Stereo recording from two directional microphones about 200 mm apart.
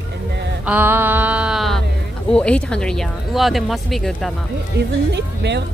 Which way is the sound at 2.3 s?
5° left (ahead or behind).